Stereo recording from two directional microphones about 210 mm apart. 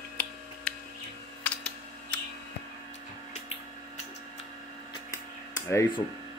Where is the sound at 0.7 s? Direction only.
5° left (ahead or behind).